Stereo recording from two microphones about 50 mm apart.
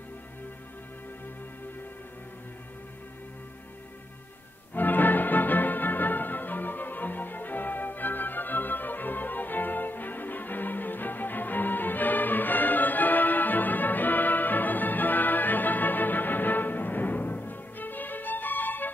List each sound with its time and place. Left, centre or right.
4.7 s music: left